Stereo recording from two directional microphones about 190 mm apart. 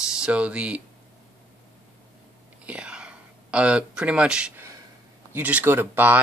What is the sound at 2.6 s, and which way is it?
Whispering, 5° right (ahead or behind).